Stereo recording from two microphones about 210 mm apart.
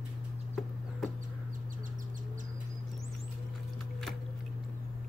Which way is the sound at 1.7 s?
40° right (ahead or behind).